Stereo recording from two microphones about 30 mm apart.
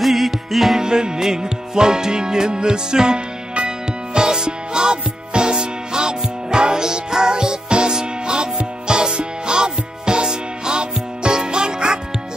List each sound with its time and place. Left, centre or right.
0.0 s music: centre
0.7 s music: right